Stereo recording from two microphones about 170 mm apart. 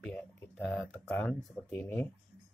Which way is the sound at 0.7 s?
5° left (ahead or behind).